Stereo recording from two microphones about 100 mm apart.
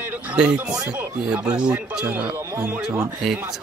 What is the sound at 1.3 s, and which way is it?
Speech, 10° right (ahead or behind).